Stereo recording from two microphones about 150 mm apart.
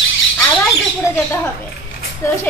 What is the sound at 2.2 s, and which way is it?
Speech, 15° left (ahead or behind).